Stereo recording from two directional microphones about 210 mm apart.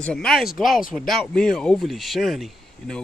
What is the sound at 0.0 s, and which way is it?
Speech, 5° left (ahead or behind).